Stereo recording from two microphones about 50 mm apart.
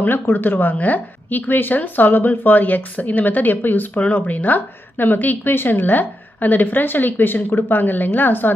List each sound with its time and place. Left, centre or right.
0.0 s a woman's voice: left